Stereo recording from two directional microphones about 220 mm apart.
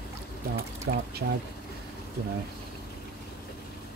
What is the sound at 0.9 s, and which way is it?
Speech, 45° right (ahead or behind).